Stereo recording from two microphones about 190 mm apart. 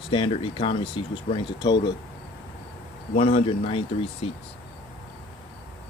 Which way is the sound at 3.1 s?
30° left (ahead or behind).